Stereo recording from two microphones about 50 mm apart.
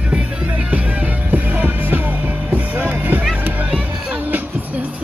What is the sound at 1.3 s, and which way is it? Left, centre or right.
Music, right.